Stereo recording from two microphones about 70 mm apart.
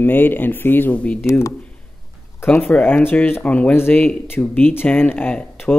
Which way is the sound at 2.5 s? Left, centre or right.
Left.